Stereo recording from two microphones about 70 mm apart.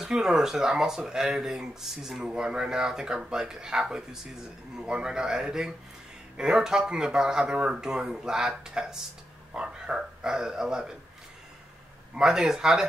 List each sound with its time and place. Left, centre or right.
0.0 s speech: centre
12.2 s speech: centre